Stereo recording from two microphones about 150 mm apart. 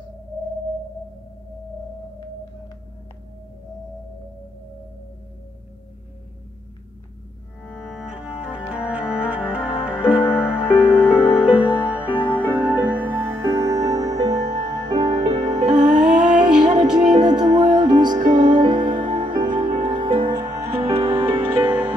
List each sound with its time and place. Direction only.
7.7 s music: 5° right (ahead or behind)
12.3 s music: 10° left (ahead or behind)
12.9 s music: 10° right (ahead or behind)
14.3 s music: 50° right (ahead or behind)
14.7 s music: 25° right (ahead or behind)
15.6 s music: 55° right (ahead or behind)
17.2 s music: 25° right (ahead or behind)
18.2 s music: 55° right (ahead or behind)
18.6 s music: 30° right (ahead or behind)
20.4 s music: 45° right (ahead or behind)